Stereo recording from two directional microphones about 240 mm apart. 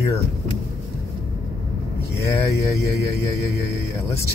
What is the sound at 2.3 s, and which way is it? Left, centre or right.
Speech, centre.